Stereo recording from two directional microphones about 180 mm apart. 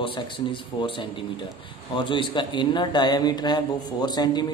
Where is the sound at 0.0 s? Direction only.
25° left (ahead or behind).